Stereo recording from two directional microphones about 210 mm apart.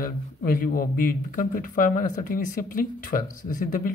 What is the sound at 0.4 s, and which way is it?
Speech, 40° left (ahead or behind).